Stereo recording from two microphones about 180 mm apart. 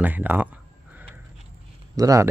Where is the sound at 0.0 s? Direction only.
10° right (ahead or behind).